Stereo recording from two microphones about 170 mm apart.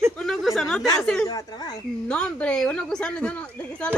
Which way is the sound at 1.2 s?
20° left (ahead or behind).